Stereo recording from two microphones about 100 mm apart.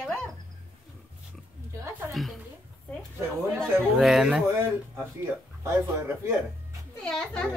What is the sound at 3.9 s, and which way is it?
Speech, 5° right (ahead or behind).